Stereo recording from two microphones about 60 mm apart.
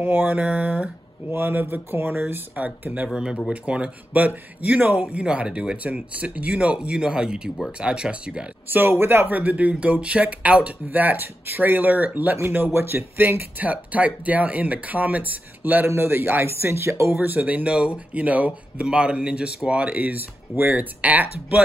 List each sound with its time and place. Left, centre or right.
0.0 s speech: right
0.4 s speech: right
1.3 s speech: right
2.5 s speech: right
3.1 s speech: centre
8.6 s speech: right
12.4 s speech: right
17.2 s speech: right